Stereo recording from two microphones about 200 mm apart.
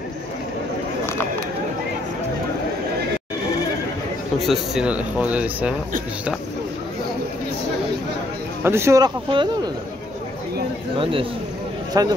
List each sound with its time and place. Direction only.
4.5 s speech: 5° right (ahead or behind)
8.6 s speech: 15° right (ahead or behind)
11.0 s a man's voice: 25° right (ahead or behind)